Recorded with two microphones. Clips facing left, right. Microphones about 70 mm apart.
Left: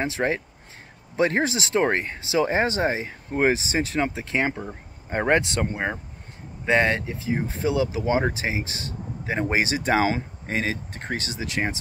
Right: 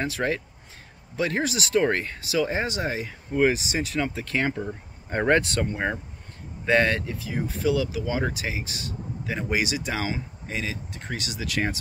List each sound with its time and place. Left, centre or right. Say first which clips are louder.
0.0 s speech: left 2 dB; left
4.1 s speech: left 1 dB; left
10.0 s speech: left 6 dB; left